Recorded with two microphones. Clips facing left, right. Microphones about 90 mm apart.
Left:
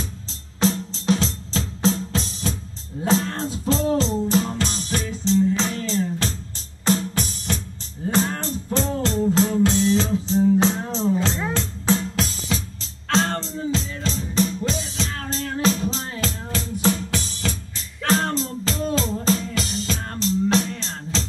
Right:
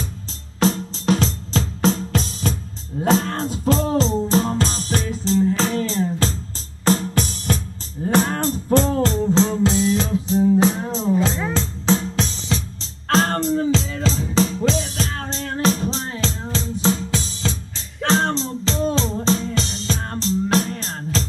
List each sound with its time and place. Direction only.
0.6 s music: 50° right (ahead or behind)
4.0 s music: 40° right (ahead or behind); by 9.8 s 20° right (ahead or behind)
9.9 s music: 10° right (ahead or behind)
13.1 s music: 45° right (ahead or behind); by 15.0 s 80° right
15.0 s music: 35° right (ahead or behind)